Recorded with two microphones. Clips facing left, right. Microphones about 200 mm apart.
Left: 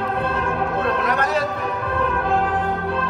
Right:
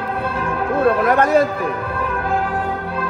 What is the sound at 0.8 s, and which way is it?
Chatter, 50° right (ahead or behind).